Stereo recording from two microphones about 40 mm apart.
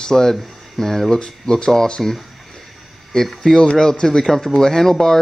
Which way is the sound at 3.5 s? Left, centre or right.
Centre.